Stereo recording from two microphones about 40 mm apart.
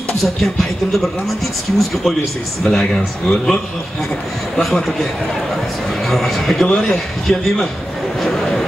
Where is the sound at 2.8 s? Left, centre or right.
Centre.